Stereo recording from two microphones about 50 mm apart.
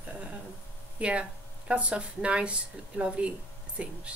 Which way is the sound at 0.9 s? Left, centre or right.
Right.